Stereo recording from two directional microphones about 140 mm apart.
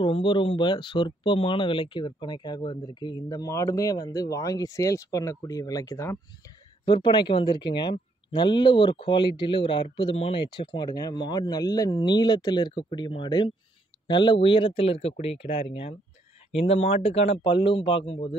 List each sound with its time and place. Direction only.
0.0 s speech: 35° left (ahead or behind)
6.9 s speech: 35° left (ahead or behind)